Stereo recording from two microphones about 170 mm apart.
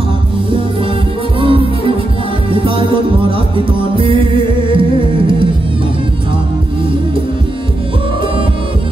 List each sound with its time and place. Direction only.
1.4 s music: 30° right (ahead or behind)